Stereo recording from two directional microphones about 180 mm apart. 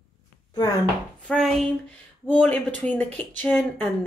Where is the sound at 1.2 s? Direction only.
5° left (ahead or behind).